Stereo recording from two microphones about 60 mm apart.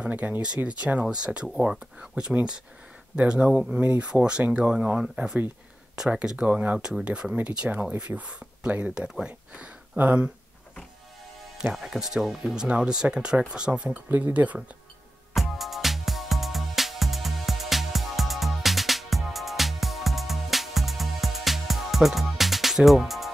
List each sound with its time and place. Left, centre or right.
0.0 s speech: right
6.8 s speech: centre
9.9 s speech: right
11.7 s speech: centre
14.0 s speech: right
15.3 s music: centre